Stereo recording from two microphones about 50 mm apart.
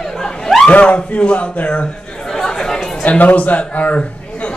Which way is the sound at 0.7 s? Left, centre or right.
Left.